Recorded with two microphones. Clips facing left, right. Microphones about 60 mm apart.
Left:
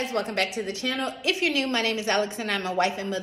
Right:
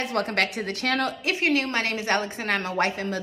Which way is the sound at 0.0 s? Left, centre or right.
Right.